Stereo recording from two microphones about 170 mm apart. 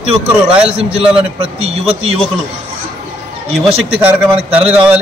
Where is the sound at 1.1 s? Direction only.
35° right (ahead or behind).